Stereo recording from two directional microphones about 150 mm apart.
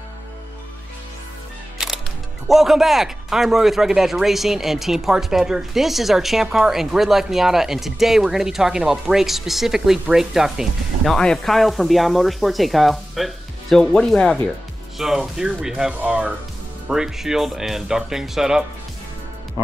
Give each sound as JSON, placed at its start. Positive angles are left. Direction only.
{"t": 2.4, "sound": "speech", "side_deg": 0}